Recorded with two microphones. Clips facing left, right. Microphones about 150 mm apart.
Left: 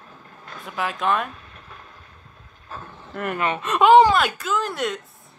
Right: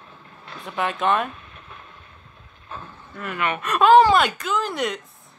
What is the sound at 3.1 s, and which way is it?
Speech, 55° left (ahead or behind).